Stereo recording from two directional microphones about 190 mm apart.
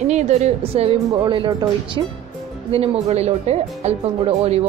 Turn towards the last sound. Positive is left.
turn(degrees=-30)  # may be behind; listen again after turning